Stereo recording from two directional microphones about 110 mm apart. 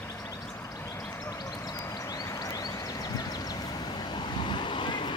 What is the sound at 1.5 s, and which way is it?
Vehicle, 30° left (ahead or behind).